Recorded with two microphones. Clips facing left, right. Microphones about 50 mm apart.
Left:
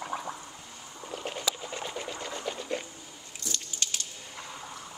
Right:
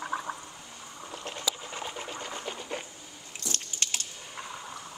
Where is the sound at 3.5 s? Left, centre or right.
Right.